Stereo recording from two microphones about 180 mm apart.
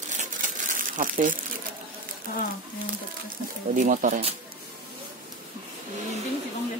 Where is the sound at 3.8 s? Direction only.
45° right (ahead or behind).